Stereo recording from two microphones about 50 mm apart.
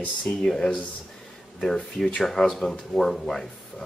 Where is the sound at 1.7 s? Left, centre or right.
Centre.